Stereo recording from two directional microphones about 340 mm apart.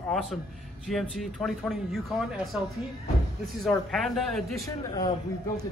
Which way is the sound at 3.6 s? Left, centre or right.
Centre.